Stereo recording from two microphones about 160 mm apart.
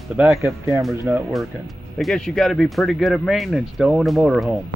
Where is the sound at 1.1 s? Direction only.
15° right (ahead or behind).